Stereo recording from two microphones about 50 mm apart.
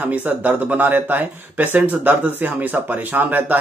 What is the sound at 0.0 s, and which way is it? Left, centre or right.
Speech, right.